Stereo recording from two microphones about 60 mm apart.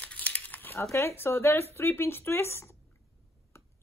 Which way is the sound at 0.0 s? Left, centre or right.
Left.